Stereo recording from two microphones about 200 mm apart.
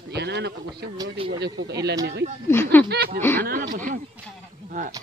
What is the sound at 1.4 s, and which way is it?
Speech, 60° right (ahead or behind).